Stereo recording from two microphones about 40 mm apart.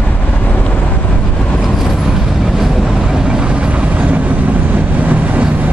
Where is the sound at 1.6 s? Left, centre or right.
Centre; by 5.4 s right.